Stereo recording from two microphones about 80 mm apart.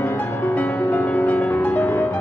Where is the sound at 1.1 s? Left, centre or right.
Left.